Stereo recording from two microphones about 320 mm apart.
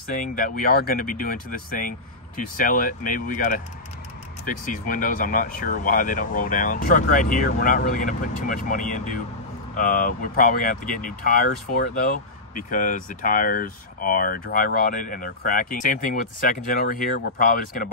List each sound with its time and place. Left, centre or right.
0.1 s speech: left